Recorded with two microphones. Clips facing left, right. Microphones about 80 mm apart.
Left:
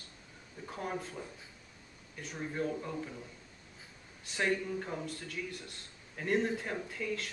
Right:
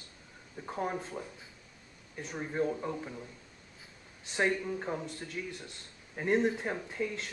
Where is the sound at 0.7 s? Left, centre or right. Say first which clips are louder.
Right 4 dB; right.